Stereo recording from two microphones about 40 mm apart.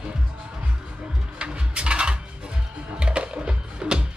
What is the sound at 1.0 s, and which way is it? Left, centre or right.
Music, right.